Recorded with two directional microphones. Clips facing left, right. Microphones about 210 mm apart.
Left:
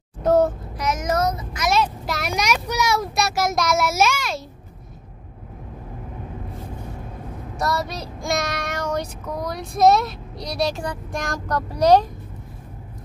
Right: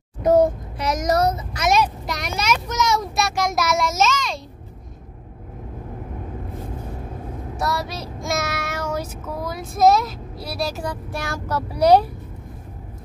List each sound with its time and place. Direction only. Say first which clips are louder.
0.2 s speech: right 2 dB; 10° right (ahead or behind)
0.7 s speech: right 2 dB; 35° right (ahead or behind)
2.0 s a sound: even; 5° left (ahead or behind)
3.5 s a child's voice: left 1 dB; centre (ahead or behind)
7.5 s child singing: left 1 dB; centre (ahead or behind)